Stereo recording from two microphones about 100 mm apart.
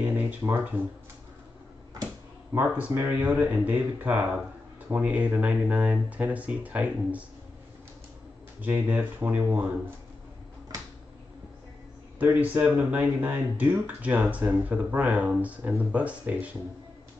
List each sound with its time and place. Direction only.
0.5 s speech: 20° right (ahead or behind)
2.5 s speech: 20° right (ahead or behind)
8.5 s speech: 15° right (ahead or behind)
12.2 s speech: 15° right (ahead or behind)